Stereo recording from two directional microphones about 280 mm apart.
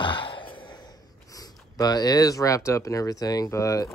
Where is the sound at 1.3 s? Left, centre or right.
Centre.